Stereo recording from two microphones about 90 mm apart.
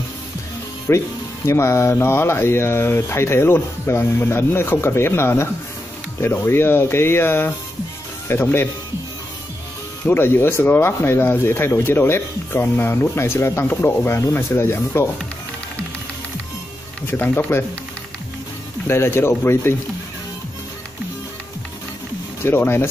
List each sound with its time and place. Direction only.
0.8 s speech: 30° left (ahead or behind)
10.0 s speech: 25° left (ahead or behind)
17.1 s speech: 25° left (ahead or behind)
18.9 s speech: 30° left (ahead or behind)
22.4 s speech: 25° left (ahead or behind)